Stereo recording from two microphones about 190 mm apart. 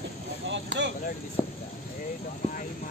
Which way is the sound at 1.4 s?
10° right (ahead or behind).